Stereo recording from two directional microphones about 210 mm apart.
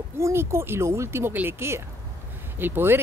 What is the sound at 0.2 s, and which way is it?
Speech, 10° right (ahead or behind).